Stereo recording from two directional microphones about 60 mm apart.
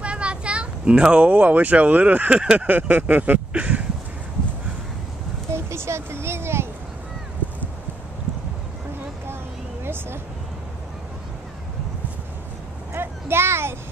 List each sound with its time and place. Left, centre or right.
0.0 s a child's voice: centre
5.5 s a child's voice: right
12.9 s a sound: right